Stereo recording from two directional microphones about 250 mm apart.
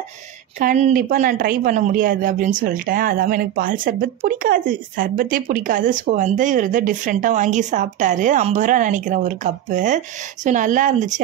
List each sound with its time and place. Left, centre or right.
0.6 s speech: right